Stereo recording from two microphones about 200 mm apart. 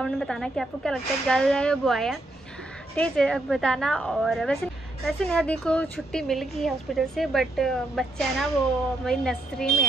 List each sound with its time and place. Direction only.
0.0 s a woman's voice: 5° left (ahead or behind)